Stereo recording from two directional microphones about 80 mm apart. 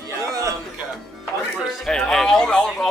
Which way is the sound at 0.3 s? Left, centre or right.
Right.